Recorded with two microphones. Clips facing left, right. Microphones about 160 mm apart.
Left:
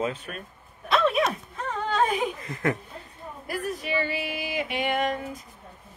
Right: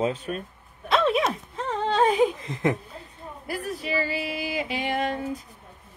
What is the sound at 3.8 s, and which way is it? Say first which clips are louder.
Female singing: right 1 dB; 30° right (ahead or behind).